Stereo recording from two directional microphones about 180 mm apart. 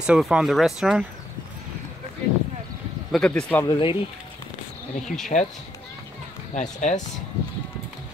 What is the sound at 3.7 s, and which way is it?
Speech, 30° left (ahead or behind).